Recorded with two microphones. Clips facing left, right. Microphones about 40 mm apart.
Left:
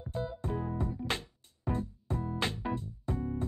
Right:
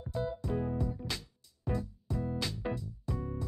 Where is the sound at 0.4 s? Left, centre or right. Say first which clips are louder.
Right 1 dB; left.